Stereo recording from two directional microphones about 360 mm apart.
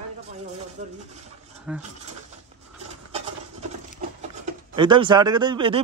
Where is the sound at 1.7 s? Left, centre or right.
Centre.